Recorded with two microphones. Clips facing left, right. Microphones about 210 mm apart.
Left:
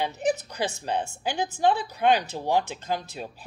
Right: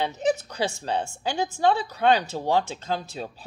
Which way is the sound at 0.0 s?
15° left (ahead or behind).